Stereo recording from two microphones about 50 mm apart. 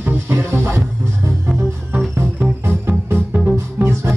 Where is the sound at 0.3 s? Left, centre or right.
Right.